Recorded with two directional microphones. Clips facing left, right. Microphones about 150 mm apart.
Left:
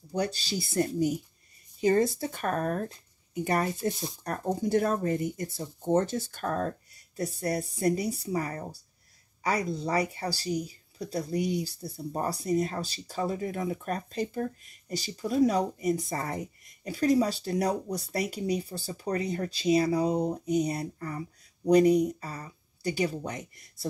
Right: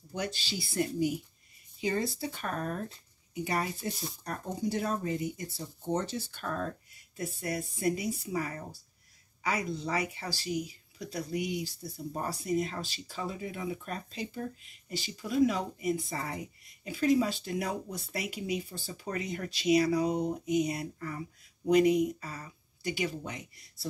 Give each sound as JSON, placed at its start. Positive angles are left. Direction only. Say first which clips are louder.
{"t": 0.1, "sound": "speech", "louder": "left 6 dB", "side_deg": 40}